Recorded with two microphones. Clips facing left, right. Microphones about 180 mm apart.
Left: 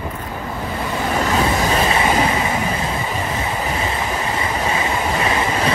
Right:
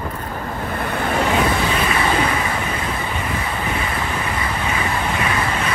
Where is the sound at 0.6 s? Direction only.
55° right (ahead or behind).